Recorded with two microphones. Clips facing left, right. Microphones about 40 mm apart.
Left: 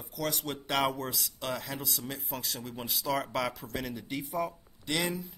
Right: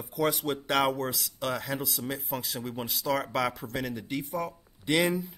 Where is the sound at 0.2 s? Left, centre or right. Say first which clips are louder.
Right 6 dB; centre.